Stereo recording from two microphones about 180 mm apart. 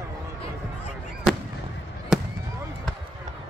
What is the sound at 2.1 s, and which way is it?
Fireworks, 5° right (ahead or behind).